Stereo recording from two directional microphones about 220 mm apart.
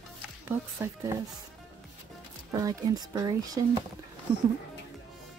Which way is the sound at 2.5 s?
15° right (ahead or behind).